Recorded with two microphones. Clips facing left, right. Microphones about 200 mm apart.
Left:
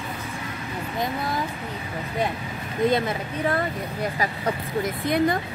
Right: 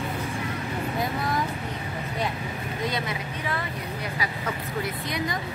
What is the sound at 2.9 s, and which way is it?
Speech, 50° left (ahead or behind).